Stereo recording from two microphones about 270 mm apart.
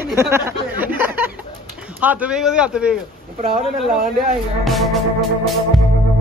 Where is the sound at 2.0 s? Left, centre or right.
Centre.